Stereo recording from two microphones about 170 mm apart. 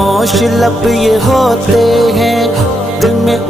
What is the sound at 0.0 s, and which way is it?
Music, centre (ahead or behind).